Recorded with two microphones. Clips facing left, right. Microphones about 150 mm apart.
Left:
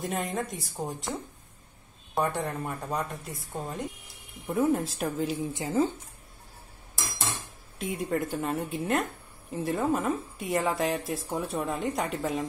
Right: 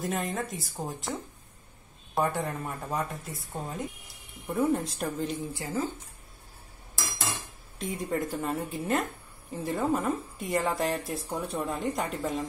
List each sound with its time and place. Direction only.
0.0 s speech: centre (ahead or behind)
2.1 s speech: centre (ahead or behind)
5.5 s speech: 25° left (ahead or behind)
7.8 s speech: centre (ahead or behind)